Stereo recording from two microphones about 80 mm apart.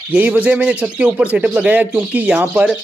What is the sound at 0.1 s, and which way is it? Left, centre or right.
Speech, centre.